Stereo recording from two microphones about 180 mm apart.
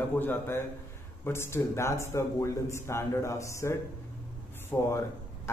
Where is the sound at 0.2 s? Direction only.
10° left (ahead or behind).